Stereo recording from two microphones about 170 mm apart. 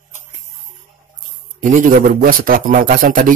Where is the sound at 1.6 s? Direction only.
50° right (ahead or behind).